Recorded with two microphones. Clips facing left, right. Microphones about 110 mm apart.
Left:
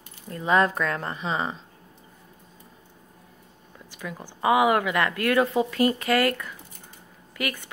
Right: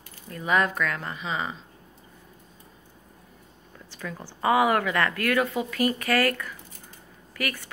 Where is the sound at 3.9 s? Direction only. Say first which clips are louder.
Even; 15° left (ahead or behind).